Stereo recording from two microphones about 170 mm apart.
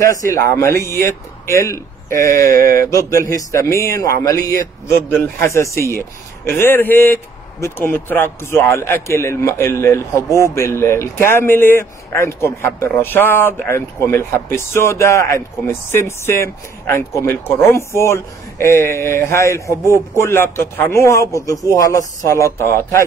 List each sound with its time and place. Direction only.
0.0 s a man's voice: 20° left (ahead or behind)